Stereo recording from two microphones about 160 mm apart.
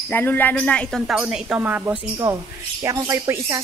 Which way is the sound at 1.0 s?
5° right (ahead or behind).